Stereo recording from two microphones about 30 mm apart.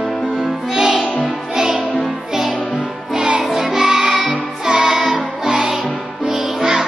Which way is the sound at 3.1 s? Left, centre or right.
Right.